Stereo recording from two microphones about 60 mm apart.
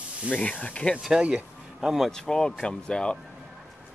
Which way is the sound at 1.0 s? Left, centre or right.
Centre.